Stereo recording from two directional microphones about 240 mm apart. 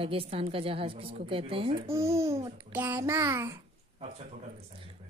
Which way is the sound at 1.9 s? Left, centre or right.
Centre.